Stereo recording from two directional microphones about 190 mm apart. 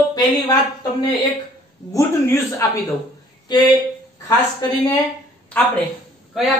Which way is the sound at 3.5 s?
20° left (ahead or behind).